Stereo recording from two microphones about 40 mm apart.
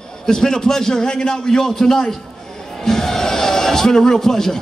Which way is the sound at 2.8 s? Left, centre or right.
Centre.